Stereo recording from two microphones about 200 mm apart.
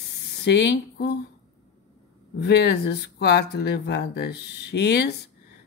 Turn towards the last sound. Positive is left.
turn(degrees=55)  # may be behind; listen again after turning